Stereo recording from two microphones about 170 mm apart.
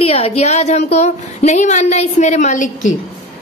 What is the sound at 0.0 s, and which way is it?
A woman's voice, 35° left (ahead or behind).